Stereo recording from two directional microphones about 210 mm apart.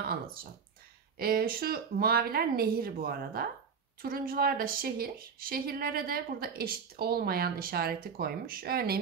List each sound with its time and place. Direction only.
0.0 s a woman's voice: 45° right (ahead or behind)